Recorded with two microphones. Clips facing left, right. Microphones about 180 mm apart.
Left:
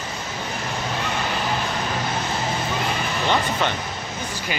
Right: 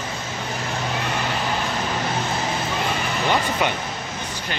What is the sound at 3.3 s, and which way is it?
Speech, 10° right (ahead or behind).